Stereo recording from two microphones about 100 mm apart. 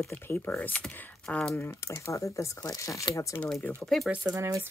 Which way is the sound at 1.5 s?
20° left (ahead or behind).